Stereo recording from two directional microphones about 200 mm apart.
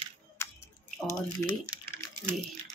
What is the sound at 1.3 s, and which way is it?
Speech, 20° left (ahead or behind).